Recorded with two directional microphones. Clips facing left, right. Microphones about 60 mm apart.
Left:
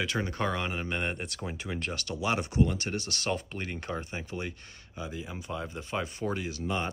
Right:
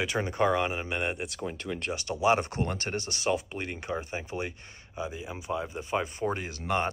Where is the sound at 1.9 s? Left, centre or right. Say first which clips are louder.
Right 7 dB; right.